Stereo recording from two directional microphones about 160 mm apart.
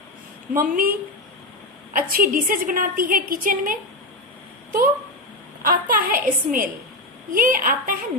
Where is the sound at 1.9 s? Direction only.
60° right (ahead or behind).